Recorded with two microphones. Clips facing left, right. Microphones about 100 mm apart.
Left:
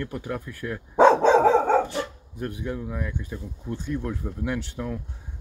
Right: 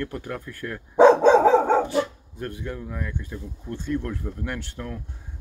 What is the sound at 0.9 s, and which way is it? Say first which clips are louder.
Dog: right 2 dB; 5° right (ahead or behind).